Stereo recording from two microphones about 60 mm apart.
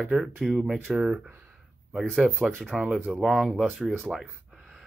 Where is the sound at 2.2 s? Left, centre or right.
Centre.